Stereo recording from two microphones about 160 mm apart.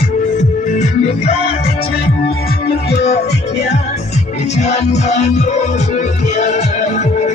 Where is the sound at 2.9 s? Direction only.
45° left (ahead or behind).